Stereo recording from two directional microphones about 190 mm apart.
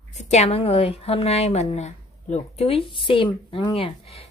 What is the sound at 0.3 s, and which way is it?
Speech, 35° left (ahead or behind).